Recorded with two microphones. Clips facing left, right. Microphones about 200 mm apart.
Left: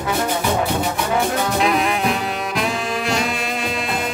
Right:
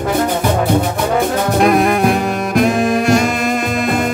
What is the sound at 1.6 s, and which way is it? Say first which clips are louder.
Saxophone: right 9 dB; 50° right (ahead or behind).